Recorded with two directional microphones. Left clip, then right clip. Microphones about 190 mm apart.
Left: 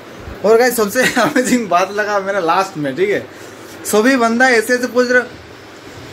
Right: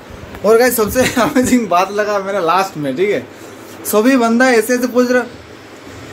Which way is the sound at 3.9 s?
5° right (ahead or behind).